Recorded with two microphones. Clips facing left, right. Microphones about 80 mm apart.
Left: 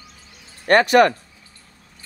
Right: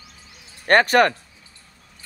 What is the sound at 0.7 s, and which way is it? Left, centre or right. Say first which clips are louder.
Speech: left 2 dB; right.